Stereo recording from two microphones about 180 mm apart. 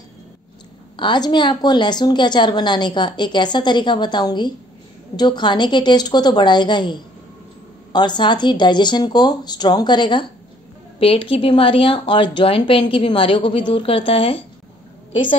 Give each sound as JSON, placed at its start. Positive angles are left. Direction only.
{"t": 0.9, "sound": "a woman's voice", "side_deg": 25}